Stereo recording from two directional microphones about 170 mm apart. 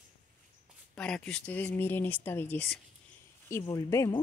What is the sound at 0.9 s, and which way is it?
Speech, 5° left (ahead or behind).